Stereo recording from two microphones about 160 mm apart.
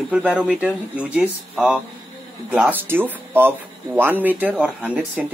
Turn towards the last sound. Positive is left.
turn(degrees=-10)  # may be behind; listen again after turning